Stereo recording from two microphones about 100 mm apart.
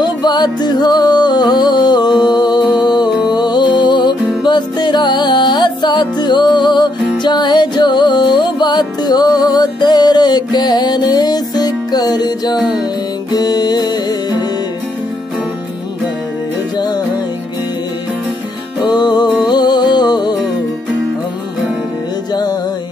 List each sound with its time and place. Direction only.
0.0 s music: 45° left (ahead or behind)
16.7 s music: 40° left (ahead or behind)
18.9 s music: 45° left (ahead or behind)
22.3 s music: 40° left (ahead or behind)